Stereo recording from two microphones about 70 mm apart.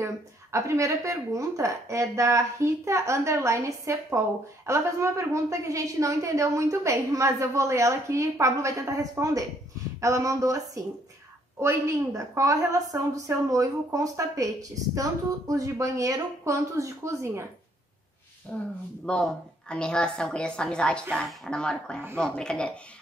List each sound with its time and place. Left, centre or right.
0.0 s a woman's voice: right
18.5 s speech: left
19.0 s a woman's voice: centre